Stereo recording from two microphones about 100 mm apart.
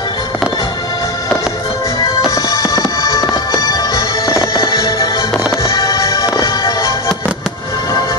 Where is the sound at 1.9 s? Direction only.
35° left (ahead or behind).